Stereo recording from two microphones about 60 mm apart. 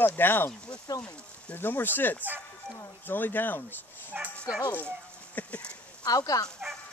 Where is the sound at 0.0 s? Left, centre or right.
Left.